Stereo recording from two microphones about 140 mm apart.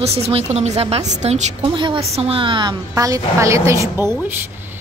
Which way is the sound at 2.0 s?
45° right (ahead or behind).